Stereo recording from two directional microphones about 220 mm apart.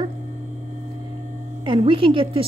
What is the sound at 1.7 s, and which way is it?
Speech, 25° right (ahead or behind).